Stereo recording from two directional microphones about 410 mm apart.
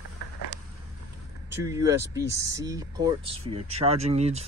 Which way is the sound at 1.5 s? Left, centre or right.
Centre.